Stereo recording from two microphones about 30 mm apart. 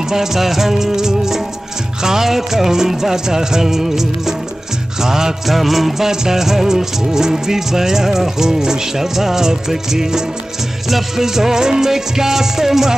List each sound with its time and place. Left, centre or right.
0.1 s music: centre
5.5 s music: centre
6.0 s music: centre